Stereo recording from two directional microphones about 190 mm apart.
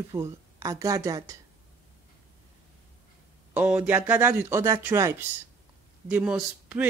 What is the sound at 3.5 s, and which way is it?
Speech, 5° right (ahead or behind).